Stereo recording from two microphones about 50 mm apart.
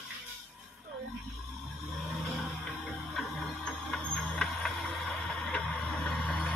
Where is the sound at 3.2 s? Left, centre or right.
Centre.